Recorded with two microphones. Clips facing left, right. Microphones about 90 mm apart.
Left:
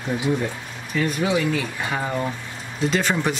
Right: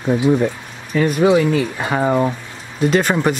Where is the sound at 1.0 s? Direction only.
50° right (ahead or behind).